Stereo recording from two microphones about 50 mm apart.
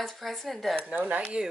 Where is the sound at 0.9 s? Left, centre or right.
Right.